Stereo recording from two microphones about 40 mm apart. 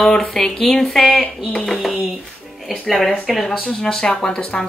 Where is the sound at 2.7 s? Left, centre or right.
Centre.